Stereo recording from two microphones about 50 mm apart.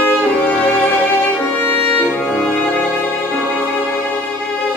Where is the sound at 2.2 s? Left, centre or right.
Centre.